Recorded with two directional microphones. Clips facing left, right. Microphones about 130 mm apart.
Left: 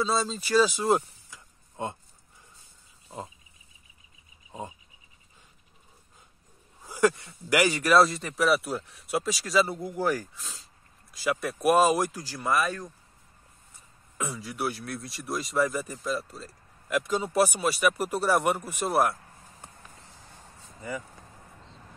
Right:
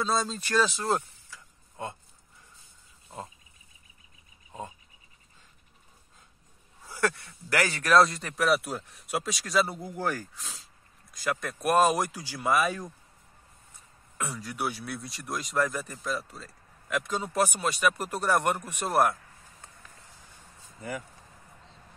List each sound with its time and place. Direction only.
0.0 s speech: centre (ahead or behind); by 2.0 s 20° left (ahead or behind)
4.5 s a sound: 15° left (ahead or behind)
6.8 s a man's voice: 15° left (ahead or behind); by 12.9 s 15° right (ahead or behind)
14.1 s a man's voice: 5° left (ahead or behind)